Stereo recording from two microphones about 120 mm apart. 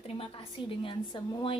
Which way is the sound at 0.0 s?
50° left (ahead or behind).